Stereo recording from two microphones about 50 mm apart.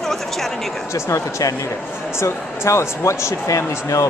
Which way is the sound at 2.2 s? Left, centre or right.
Left.